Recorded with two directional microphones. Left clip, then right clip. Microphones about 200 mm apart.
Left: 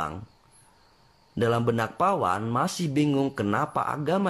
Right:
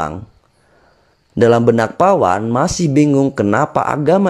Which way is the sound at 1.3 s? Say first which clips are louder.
Right 14 dB; 35° right (ahead or behind).